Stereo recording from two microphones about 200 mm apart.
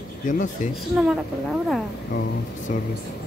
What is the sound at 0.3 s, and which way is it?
Speech, 40° left (ahead or behind).